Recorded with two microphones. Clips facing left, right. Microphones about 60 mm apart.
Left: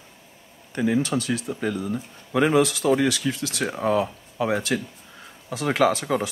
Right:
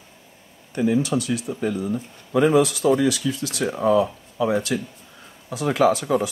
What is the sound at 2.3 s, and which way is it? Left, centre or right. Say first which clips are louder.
Speech: right 2 dB; left.